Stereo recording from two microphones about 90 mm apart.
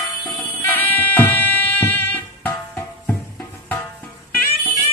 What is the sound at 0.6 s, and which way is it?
Music, 25° left (ahead or behind).